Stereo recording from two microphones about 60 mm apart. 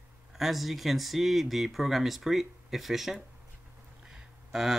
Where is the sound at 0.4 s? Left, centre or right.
Centre.